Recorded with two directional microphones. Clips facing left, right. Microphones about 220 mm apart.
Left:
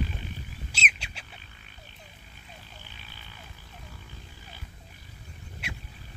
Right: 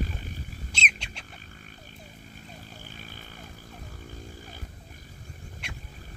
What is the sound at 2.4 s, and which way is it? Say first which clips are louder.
Vehicle: right 3 dB; 45° right (ahead or behind).